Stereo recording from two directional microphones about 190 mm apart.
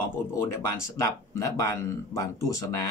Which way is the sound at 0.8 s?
15° left (ahead or behind).